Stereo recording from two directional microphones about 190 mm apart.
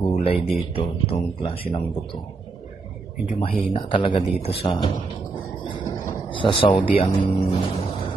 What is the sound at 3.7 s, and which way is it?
Speech, 25° left (ahead or behind).